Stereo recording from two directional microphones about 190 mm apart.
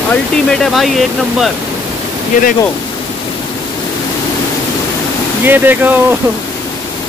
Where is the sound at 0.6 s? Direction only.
Centre (ahead or behind).